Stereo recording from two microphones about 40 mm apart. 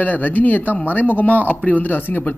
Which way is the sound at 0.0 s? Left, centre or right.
Left.